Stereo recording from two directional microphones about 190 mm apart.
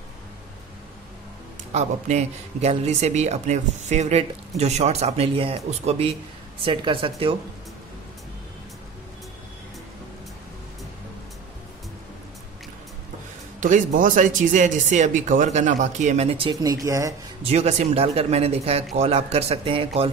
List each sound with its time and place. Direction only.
1.7 s speech: 35° right (ahead or behind)
13.6 s speech: 45° right (ahead or behind); by 17.1 s 15° right (ahead or behind)
17.4 s speech: 35° right (ahead or behind)